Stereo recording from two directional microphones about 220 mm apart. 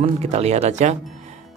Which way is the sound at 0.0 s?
30° right (ahead or behind).